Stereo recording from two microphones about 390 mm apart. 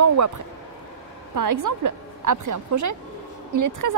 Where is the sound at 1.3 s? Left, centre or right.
Right.